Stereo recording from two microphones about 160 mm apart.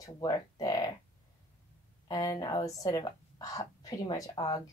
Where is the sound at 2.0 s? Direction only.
25° left (ahead or behind).